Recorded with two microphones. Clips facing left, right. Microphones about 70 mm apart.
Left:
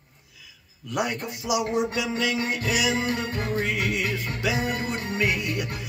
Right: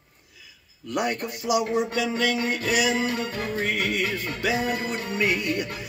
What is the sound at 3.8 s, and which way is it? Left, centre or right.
Music, centre.